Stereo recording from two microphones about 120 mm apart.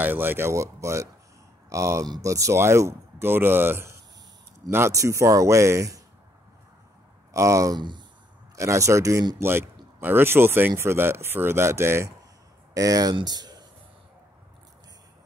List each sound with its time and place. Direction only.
0.0 s speech: 15° right (ahead or behind)
7.3 s speech: 25° right (ahead or behind)
8.5 s speech: 25° right (ahead or behind)